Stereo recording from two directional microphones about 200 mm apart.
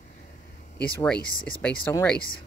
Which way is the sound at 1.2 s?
45° left (ahead or behind).